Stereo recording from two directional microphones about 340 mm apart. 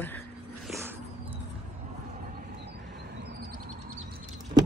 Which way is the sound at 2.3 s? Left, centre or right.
Right.